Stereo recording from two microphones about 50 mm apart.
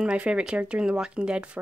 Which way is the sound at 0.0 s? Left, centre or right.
Right.